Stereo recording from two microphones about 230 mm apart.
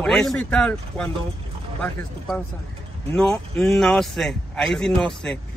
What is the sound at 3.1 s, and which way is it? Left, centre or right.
Speech, centre.